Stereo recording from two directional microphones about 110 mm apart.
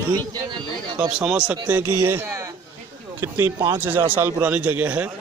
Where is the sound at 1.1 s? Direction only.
10° right (ahead or behind).